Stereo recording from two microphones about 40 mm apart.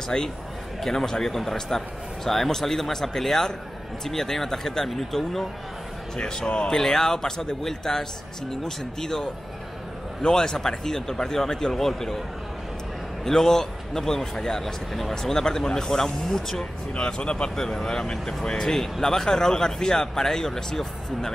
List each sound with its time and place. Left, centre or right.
0.1 s speech: centre
6.1 s a man's voice: centre
6.7 s speech: centre
13.2 s speech: centre
15.3 s speech: centre
16.9 s a man's voice: left
17.6 s speech: centre